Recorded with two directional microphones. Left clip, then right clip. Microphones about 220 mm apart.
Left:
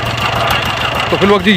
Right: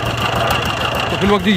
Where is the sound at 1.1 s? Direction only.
10° right (ahead or behind).